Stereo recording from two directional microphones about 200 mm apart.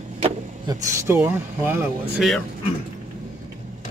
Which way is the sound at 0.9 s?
15° right (ahead or behind).